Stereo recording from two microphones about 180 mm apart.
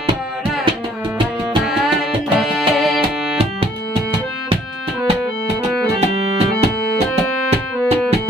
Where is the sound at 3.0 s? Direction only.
30° right (ahead or behind).